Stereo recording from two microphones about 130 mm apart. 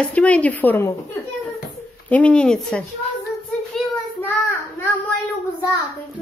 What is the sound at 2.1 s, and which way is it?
Speech, 10° left (ahead or behind).